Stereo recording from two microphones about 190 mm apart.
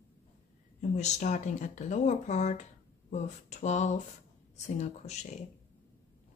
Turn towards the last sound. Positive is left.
turn(degrees=35)  # may be behind; listen again after turning